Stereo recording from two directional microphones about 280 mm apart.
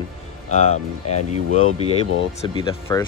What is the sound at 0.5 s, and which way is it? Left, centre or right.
Speech, left.